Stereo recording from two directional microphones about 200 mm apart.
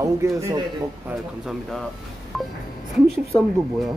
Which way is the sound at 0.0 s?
15° right (ahead or behind).